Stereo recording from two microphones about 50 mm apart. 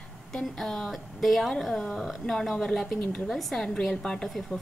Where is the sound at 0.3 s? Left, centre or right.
Centre.